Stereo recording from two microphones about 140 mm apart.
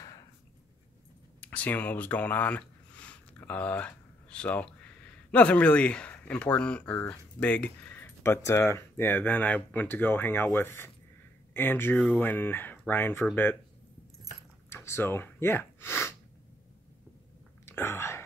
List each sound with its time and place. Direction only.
1.4 s speech: 10° left (ahead or behind)
14.7 s a sound: 20° left (ahead or behind)
17.6 s whispering: 15° left (ahead or behind)